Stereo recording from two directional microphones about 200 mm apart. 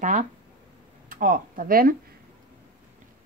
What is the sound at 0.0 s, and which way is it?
Speech, 40° right (ahead or behind).